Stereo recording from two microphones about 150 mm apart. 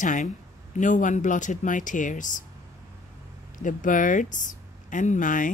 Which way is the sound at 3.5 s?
60° left (ahead or behind).